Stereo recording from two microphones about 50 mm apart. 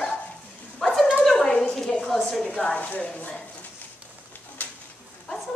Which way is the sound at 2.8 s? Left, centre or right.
Left.